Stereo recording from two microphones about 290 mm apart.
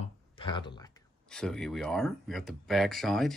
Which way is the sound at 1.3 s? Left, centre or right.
Centre.